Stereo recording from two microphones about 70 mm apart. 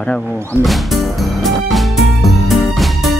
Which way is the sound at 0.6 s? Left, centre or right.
Centre.